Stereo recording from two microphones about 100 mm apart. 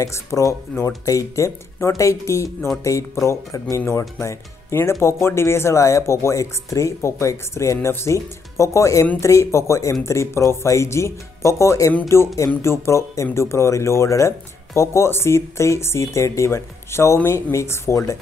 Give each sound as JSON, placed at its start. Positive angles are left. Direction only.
{"t": 0.0, "sound": "speech", "side_deg": 30}